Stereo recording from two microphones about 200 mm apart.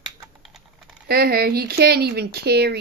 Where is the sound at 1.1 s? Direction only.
50° right (ahead or behind).